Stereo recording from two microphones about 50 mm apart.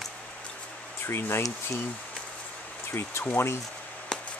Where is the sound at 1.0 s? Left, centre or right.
Left.